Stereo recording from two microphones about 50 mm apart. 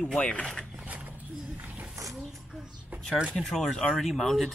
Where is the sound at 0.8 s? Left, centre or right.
Right.